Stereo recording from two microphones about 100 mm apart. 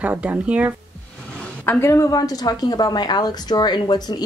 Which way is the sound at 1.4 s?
25° left (ahead or behind).